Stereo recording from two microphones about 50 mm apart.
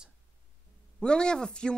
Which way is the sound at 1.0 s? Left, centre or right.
Centre.